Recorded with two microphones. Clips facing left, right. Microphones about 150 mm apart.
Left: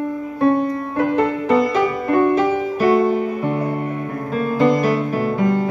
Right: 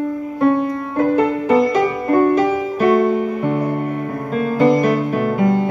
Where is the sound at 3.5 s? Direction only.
20° right (ahead or behind).